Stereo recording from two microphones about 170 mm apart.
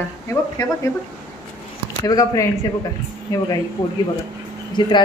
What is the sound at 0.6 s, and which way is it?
Speech, 20° left (ahead or behind).